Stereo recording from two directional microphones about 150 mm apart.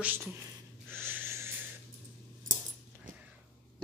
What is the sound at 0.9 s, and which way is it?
Wheeze, 15° right (ahead or behind).